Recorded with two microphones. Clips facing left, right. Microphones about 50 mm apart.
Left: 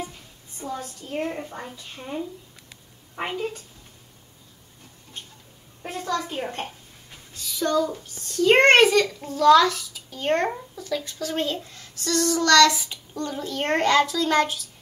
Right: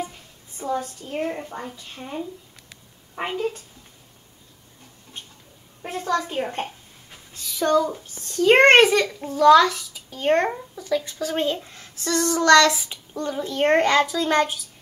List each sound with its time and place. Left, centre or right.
0.6 s a sound: centre
1.3 s a child's voice: centre
5.9 s speech: right
6.2 s a sound: centre
7.3 s speech: right
7.9 s a child's voice: centre